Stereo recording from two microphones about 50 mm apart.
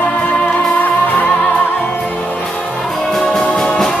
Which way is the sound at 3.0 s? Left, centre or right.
Centre.